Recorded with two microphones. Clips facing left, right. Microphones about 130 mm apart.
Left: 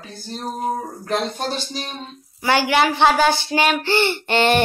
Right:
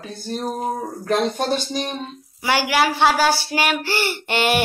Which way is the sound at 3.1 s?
20° left (ahead or behind).